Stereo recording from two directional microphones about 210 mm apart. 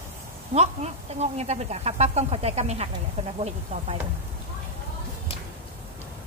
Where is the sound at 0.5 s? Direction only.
30° right (ahead or behind).